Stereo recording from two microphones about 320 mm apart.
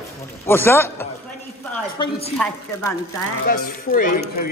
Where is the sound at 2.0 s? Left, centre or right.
Centre.